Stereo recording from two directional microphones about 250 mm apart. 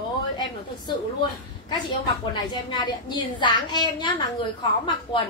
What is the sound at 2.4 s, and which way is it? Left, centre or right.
A woman's voice, centre.